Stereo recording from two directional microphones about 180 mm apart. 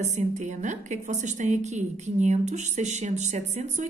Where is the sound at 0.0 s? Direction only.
40° right (ahead or behind).